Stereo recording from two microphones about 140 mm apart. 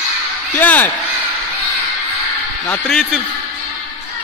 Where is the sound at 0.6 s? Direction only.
10° left (ahead or behind).